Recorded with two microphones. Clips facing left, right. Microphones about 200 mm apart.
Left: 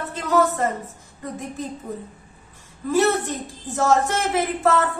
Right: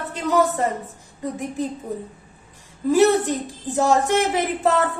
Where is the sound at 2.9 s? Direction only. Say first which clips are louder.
Right 4 dB; 15° right (ahead or behind).